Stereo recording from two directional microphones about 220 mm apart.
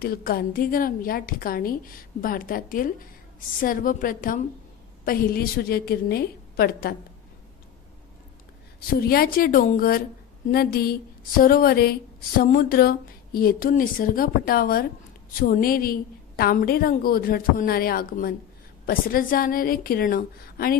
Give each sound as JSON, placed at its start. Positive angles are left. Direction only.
{"t": 0.0, "sound": "a woman's voice", "side_deg": 45}
{"t": 9.0, "sound": "a woman's voice", "side_deg": 45}